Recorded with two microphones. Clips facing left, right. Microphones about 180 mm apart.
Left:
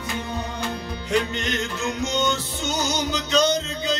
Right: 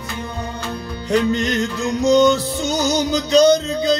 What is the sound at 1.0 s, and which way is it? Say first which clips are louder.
Music: right 7 dB; 35° right (ahead or behind).